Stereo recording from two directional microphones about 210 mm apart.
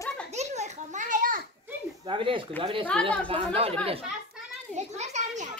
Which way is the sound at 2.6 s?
25° right (ahead or behind).